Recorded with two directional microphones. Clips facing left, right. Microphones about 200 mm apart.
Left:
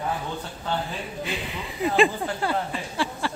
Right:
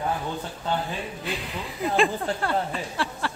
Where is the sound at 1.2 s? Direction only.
Centre (ahead or behind).